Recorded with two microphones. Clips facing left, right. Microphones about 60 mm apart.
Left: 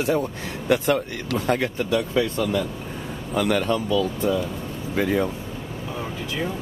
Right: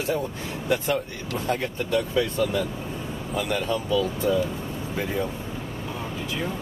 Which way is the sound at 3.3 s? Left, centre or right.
Left.